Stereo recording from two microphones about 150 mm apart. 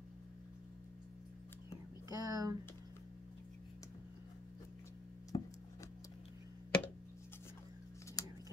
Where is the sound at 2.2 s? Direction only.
25° right (ahead or behind).